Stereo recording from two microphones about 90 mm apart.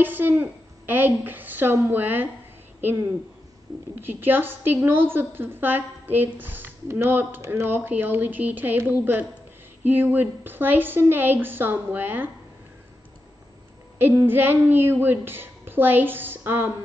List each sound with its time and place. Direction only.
0.0 s a woman's voice: 20° right (ahead or behind)
4.0 s a woman's voice: 20° right (ahead or behind)
13.9 s a woman's voice: 25° right (ahead or behind)